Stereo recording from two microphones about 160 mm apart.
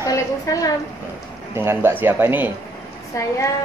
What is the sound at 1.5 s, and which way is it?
Speech, 15° right (ahead or behind).